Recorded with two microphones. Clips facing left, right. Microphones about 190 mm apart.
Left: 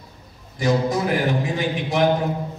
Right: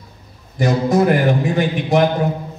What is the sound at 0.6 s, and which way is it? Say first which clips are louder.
A man's voice: right 5 dB; 55° right (ahead or behind).